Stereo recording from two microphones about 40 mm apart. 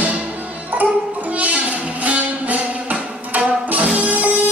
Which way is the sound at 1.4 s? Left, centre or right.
Right.